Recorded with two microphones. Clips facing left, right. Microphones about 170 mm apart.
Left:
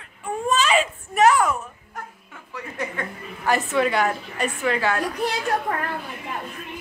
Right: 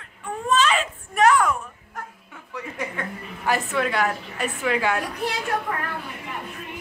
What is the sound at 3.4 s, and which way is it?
A woman's voice, centre (ahead or behind).